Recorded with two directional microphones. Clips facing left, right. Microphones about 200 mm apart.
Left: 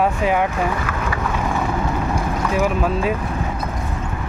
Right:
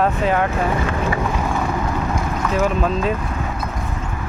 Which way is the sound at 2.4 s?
10° left (ahead or behind).